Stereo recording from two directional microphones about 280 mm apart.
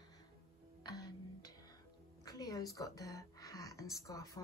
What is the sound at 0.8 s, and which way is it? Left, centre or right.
A woman's voice, centre.